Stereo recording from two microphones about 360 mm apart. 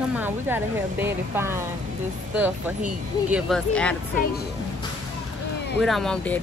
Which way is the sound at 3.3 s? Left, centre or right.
Centre.